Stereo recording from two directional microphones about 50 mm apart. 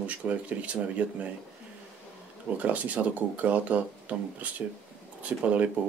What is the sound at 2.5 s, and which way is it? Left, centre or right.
Speech, right.